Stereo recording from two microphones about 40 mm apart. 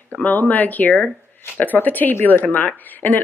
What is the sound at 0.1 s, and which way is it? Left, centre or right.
Speech, left.